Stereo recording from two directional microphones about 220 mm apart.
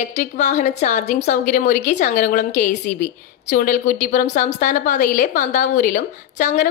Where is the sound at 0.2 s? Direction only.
30° left (ahead or behind).